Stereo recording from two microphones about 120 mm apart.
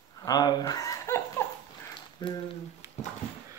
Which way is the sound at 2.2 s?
40° left (ahead or behind).